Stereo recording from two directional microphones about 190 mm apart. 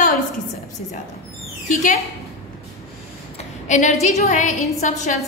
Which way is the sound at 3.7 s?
40° left (ahead or behind).